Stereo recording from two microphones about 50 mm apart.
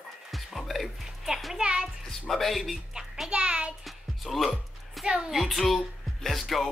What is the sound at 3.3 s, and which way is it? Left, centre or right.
Speech, right.